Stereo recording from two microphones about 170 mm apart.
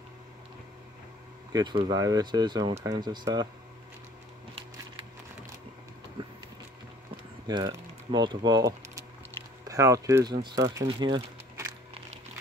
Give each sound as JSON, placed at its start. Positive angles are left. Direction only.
{"t": 1.5, "sound": "speech", "side_deg": -25}
{"t": 6.2, "sound": "a sound", "side_deg": -30}
{"t": 7.4, "sound": "speech", "side_deg": -25}